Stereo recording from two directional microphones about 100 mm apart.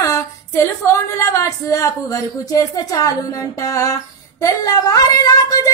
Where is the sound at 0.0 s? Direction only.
30° left (ahead or behind).